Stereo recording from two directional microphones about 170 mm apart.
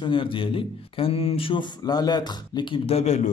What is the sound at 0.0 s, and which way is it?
Speech, 30° left (ahead or behind).